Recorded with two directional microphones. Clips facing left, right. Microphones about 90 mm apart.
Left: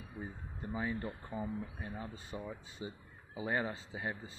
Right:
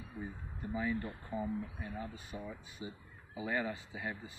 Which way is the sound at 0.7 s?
35° left (ahead or behind).